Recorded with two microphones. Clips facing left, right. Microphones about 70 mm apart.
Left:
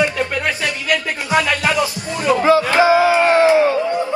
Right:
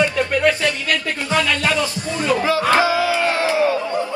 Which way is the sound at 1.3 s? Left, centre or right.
Left.